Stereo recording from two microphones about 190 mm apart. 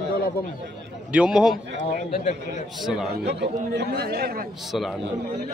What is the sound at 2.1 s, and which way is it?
Speech, 40° left (ahead or behind).